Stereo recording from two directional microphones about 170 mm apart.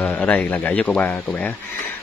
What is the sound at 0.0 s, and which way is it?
Speech, 10° left (ahead or behind).